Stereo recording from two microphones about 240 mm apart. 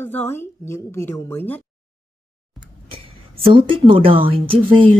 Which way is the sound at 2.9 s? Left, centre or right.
Right.